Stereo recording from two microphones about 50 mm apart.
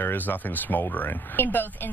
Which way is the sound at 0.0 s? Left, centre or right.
Left.